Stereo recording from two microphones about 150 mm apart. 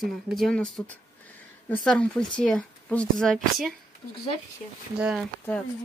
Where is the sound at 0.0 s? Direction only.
Centre (ahead or behind).